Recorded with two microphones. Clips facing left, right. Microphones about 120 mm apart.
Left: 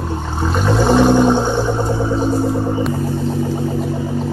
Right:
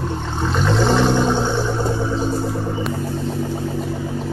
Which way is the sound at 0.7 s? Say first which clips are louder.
Left 5 dB; 15° left (ahead or behind).